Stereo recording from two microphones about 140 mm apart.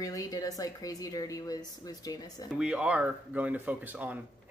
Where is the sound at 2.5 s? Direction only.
5° right (ahead or behind).